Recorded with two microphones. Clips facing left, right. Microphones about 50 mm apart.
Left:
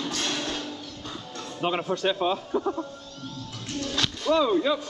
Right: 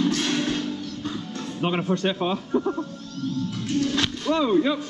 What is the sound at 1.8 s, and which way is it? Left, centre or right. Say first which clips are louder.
Speech: right 2 dB; centre.